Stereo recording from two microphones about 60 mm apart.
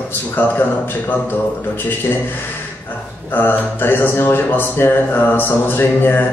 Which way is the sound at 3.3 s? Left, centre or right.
Left.